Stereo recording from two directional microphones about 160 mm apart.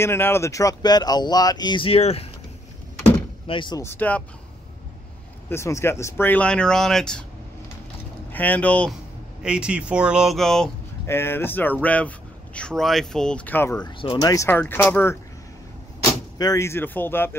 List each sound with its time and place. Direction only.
0.0 s speech: 15° left (ahead or behind); by 2.2 s 40° left (ahead or behind)
3.4 s speech: 30° left (ahead or behind)
3.8 s speech: 10° left (ahead or behind)
5.5 s speech: 15° left (ahead or behind)
8.3 s speech: 10° left (ahead or behind)
9.4 s speech: 5° right (ahead or behind)
11.1 s speech: 15° left (ahead or behind)
13.8 s speech: 30° left (ahead or behind)
14.3 s speech: 15° left (ahead or behind)
16.3 s speech: 20° left (ahead or behind)